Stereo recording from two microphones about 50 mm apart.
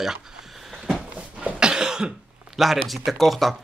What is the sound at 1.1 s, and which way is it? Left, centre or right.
Cough, centre.